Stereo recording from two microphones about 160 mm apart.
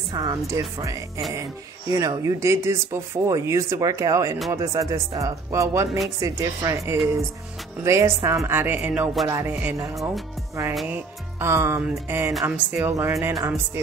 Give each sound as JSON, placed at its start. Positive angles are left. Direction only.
{"t": 0.1, "sound": "speech", "side_deg": -25}
{"t": 10.9, "sound": "speech", "side_deg": -15}